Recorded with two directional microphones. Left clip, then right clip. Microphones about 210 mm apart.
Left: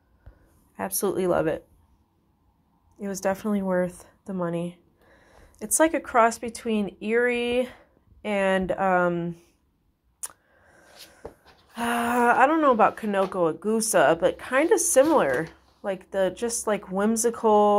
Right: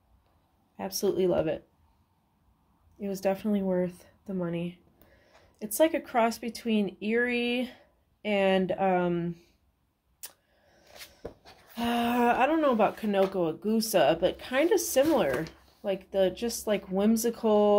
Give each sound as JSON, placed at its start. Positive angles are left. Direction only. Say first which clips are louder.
{"t": 0.7, "sound": "speech", "louder": "left 2 dB", "side_deg": 15}
{"t": 3.0, "sound": "a woman's voice", "louder": "left 2 dB", "side_deg": 0}
{"t": 3.4, "sound": "a woman's voice", "louder": "left 4 dB", "side_deg": 15}
{"t": 5.6, "sound": "a woman's voice", "louder": "left 3 dB", "side_deg": 0}
{"t": 6.0, "sound": "speech", "louder": "left 6 dB", "side_deg": 15}
{"t": 11.8, "sound": "a woman's voice", "louder": "left 4 dB", "side_deg": 15}
{"t": 17.4, "sound": "speech", "louder": "left 5 dB", "side_deg": 10}